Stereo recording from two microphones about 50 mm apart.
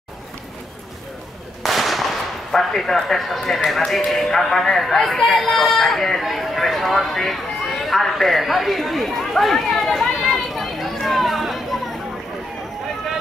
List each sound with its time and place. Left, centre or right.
1.6 s speech: centre